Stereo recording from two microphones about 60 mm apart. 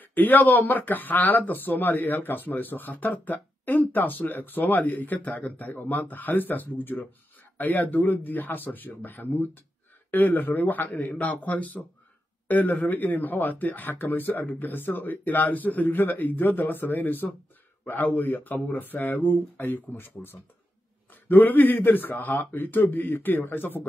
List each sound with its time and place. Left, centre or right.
0.0 s speech: left